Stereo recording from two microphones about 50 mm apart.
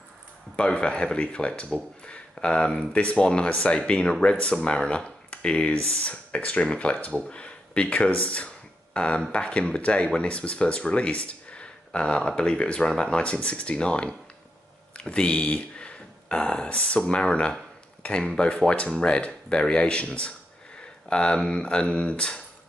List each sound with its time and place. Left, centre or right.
0.6 s speech: left
1.7 s speech: centre
2.0 s speech: left